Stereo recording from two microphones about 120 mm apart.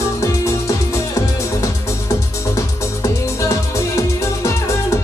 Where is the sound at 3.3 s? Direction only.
25° left (ahead or behind).